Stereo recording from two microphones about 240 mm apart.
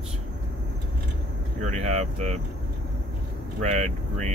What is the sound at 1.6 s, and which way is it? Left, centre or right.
Speech, right.